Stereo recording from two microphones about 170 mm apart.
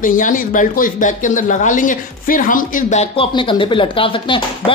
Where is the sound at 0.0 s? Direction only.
50° left (ahead or behind).